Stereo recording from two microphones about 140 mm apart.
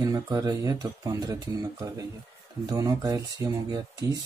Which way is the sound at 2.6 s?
25° right (ahead or behind).